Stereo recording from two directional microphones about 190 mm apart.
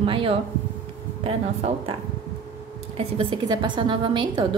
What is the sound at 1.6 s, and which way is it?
Speech, 35° right (ahead or behind).